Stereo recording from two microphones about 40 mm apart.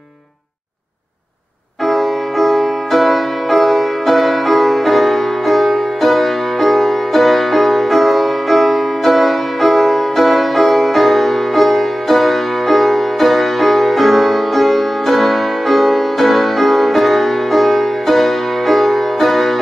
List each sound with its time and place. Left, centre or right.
1.9 s music: centre